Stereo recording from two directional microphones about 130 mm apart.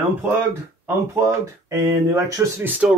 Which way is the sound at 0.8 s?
25° right (ahead or behind).